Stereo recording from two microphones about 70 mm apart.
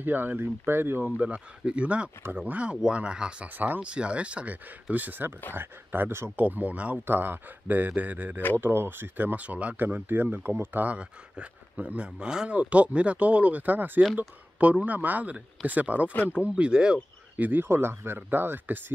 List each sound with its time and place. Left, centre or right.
0.0 s speech: right
1.1 s speech: centre
3.4 s speech: right
6.3 s speech: right
17.4 s speech: right